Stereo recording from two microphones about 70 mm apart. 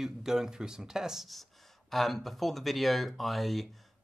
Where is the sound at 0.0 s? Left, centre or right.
Centre.